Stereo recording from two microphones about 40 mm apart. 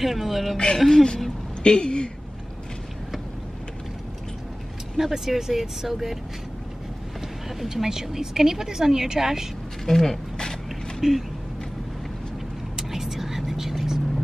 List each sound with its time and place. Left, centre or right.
0.0 s speech: centre
0.7 s speech: centre
1.6 s speech: left
4.9 s a woman's voice: centre
7.4 s a woman's voice: centre
9.8 s a sound: centre
11.0 s speech: centre
12.7 s vehicle: centre